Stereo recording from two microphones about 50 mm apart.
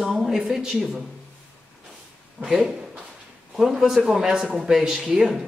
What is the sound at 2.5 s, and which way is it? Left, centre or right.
A man's voice, centre.